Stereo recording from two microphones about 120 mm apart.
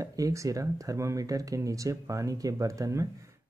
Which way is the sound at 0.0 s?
30° right (ahead or behind).